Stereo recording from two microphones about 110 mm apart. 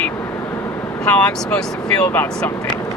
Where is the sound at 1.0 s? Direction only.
10° left (ahead or behind).